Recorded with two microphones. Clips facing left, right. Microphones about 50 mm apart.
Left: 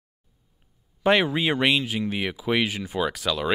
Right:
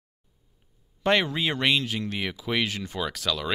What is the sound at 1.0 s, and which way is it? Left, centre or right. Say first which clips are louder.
Speech: left 3 dB; centre.